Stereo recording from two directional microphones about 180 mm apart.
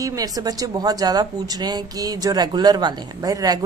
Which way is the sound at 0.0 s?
20° right (ahead or behind).